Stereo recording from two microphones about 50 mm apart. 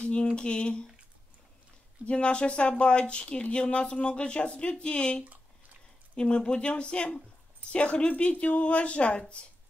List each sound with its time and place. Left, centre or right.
0.0 s a sound: left
0.4 s speech: left
2.0 s speech: left